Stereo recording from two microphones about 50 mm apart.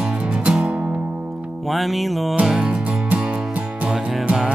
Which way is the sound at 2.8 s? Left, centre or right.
Right.